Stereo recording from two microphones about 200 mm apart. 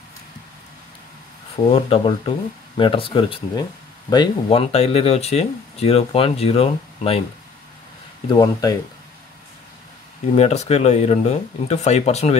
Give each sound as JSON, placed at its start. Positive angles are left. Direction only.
{"t": 1.7, "sound": "speech", "side_deg": 30}
{"t": 8.3, "sound": "speech", "side_deg": 20}
{"t": 10.3, "sound": "speech", "side_deg": 35}